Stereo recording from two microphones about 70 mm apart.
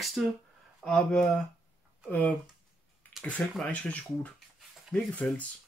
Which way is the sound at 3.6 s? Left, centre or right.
Centre.